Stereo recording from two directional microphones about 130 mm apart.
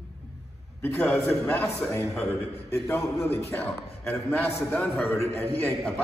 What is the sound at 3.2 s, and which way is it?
A man's voice, 15° left (ahead or behind).